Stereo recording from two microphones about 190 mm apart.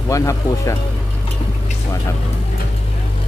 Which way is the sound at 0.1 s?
15° left (ahead or behind).